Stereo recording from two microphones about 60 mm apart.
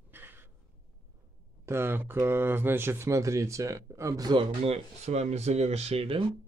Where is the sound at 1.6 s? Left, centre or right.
Right.